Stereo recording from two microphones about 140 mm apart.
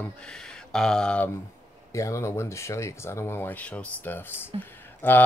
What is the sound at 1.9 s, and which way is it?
Speech, 20° left (ahead or behind).